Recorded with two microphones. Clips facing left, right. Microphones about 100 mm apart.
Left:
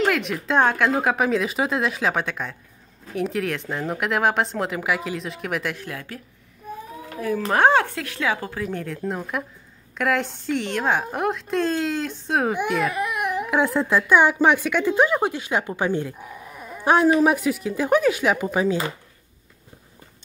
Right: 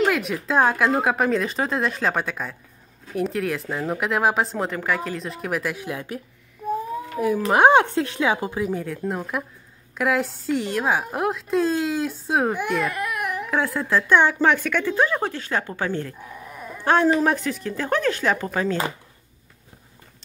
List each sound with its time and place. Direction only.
0.0 s a woman's voice: centre (ahead or behind)
5.9 s speech: 20° right (ahead or behind)
8.7 s a woman's voice: 5° right (ahead or behind)
12.9 s speech: 20° left (ahead or behind)